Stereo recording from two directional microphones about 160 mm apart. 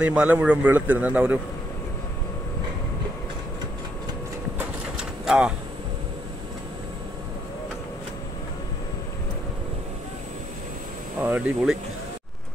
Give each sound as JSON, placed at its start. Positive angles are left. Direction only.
{"t": 0.0, "sound": "a man's voice", "side_deg": -10}
{"t": 4.6, "sound": "a sound", "side_deg": -5}
{"t": 11.2, "sound": "speech", "side_deg": -10}